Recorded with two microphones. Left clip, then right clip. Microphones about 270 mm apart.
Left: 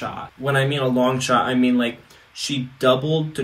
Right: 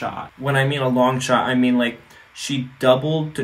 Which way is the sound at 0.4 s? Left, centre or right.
Centre.